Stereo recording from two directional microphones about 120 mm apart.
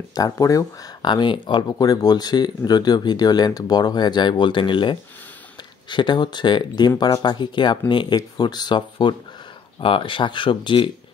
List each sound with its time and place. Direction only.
0.1 s speech: 30° left (ahead or behind)
1.7 s speech: 30° left (ahead or behind)